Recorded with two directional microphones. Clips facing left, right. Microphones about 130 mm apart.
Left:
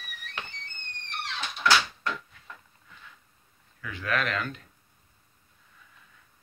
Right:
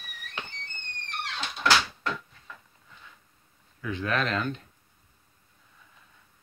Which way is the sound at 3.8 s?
25° right (ahead or behind).